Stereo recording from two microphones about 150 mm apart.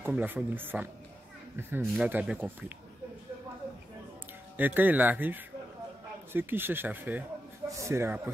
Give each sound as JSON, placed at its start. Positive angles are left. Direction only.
{"t": 0.0, "sound": "speech", "side_deg": -10}
{"t": 4.6, "sound": "speech", "side_deg": -10}